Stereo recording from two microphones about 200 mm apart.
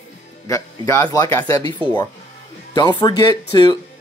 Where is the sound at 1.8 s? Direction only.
25° right (ahead or behind).